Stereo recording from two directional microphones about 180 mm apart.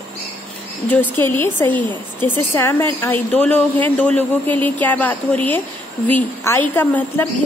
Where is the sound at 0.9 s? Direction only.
10° left (ahead or behind).